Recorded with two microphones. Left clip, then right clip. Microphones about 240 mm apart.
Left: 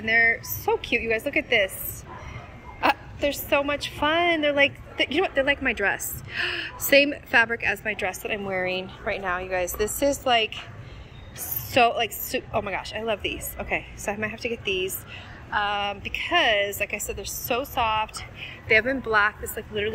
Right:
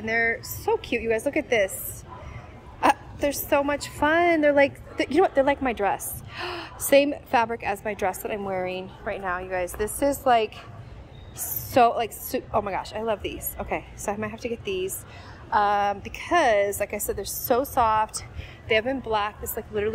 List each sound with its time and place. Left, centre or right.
0.0 s a woman's voice: centre
2.8 s a sound: centre
3.4 s a woman's voice: centre
11.7 s a woman's voice: centre
18.7 s a woman's voice: centre